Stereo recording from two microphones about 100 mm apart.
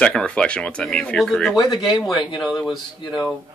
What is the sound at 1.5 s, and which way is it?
Speech, 50° left (ahead or behind).